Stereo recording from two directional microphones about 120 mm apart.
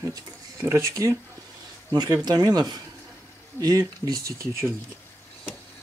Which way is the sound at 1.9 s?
35° right (ahead or behind).